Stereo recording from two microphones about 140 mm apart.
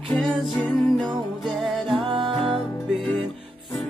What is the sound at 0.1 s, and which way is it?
Music, 5° left (ahead or behind).